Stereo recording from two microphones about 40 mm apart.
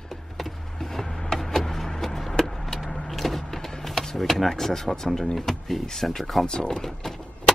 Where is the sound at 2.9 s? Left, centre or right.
Centre.